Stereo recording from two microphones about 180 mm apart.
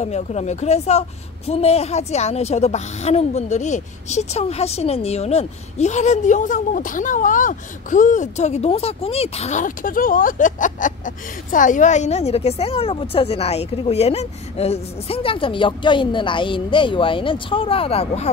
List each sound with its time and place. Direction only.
0.0 s a woman's voice: 40° left (ahead or behind)